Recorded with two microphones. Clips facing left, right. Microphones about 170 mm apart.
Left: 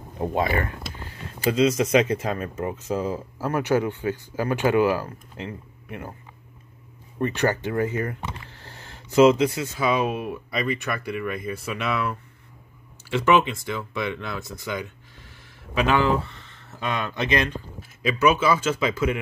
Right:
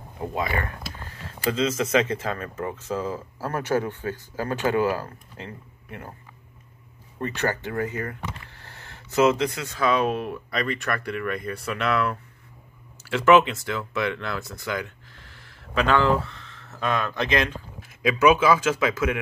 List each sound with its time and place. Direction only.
0.3 s speech: 25° left (ahead or behind)
7.2 s speech: 20° left (ahead or behind)
9.8 s speech: 5° left (ahead or behind)
18.5 s speech: 10° right (ahead or behind)